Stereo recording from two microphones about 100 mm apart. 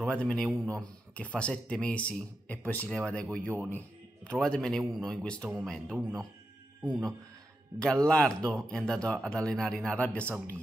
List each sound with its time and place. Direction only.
0.0 s a man's voice: 10° left (ahead or behind)